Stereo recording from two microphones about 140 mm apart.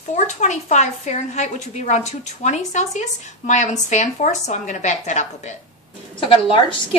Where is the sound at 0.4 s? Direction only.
60° left (ahead or behind).